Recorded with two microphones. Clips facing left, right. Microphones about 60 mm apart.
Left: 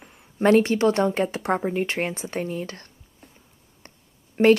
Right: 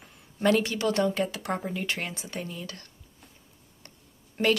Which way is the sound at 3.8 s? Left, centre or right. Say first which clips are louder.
Left 4 dB; left.